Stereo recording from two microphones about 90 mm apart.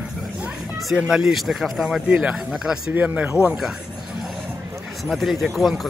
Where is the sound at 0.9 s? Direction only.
5° right (ahead or behind).